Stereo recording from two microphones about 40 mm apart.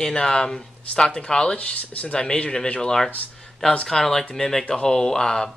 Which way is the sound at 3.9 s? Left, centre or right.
Centre.